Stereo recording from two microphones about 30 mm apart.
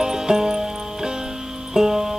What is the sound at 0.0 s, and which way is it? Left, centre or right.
Music, centre.